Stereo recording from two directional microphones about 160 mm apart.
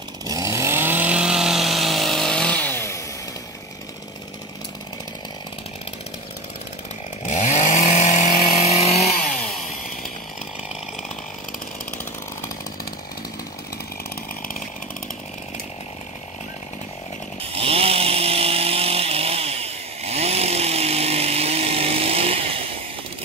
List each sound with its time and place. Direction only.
0.2 s chainsaw: 20° right (ahead or behind); by 3.0 s 15° left (ahead or behind)
7.2 s chainsaw: 50° left (ahead or behind)
17.4 s chainsaw: 35° right (ahead or behind)